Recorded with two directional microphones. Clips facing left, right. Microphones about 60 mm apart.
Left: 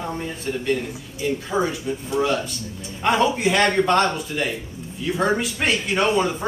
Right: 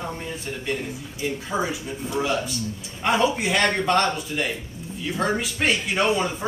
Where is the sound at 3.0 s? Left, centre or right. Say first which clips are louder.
Left 2 dB; centre.